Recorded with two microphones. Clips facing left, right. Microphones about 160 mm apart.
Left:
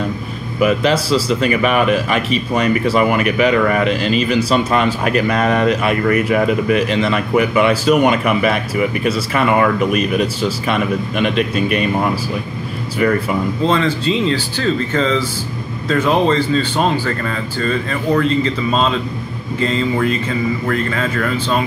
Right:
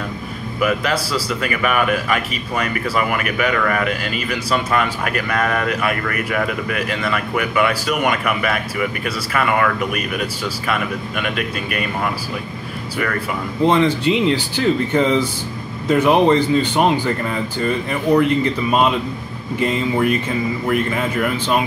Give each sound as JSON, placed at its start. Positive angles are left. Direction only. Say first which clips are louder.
{"t": 0.7, "sound": "speech", "louder": "left 6 dB", "side_deg": 25}
{"t": 13.6, "sound": "speech", "louder": "right 5 dB", "side_deg": -15}